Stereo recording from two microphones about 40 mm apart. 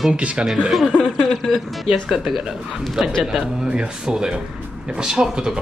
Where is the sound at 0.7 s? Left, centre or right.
Centre.